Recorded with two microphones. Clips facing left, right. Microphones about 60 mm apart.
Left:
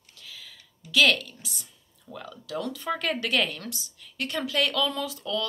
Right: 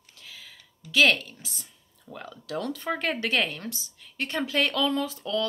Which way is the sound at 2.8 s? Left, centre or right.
Right.